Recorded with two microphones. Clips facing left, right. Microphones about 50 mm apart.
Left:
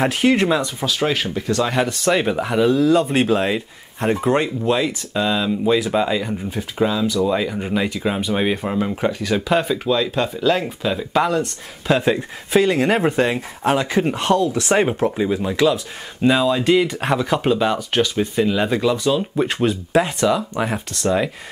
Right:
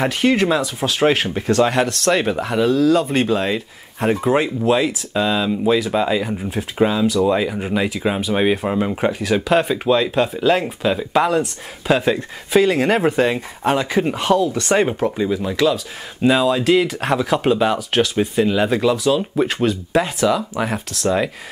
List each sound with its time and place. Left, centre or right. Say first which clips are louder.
0.0 s speech: even; centre
0.9 s speech: right 5 dB; right
1.7 s speech: right 1 dB; centre
6.8 s speech: right 2 dB; right
7.2 s speech: right 2 dB; centre